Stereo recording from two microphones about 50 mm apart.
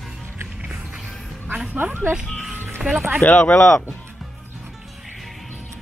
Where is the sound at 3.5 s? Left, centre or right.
Left.